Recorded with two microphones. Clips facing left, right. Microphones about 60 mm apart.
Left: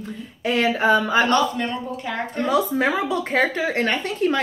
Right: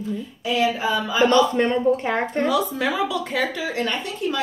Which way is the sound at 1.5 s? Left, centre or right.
Right.